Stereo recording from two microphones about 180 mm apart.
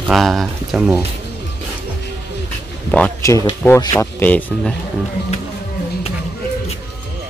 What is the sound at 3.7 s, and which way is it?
Speech, 15° left (ahead or behind).